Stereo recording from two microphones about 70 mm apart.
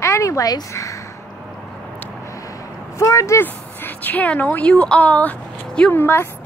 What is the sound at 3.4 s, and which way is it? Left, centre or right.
Speech, left.